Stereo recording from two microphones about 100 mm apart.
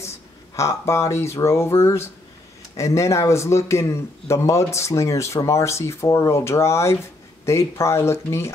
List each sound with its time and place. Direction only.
0.6 s speech: 30° left (ahead or behind)